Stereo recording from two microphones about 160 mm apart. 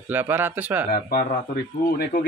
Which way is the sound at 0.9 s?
70° left (ahead or behind).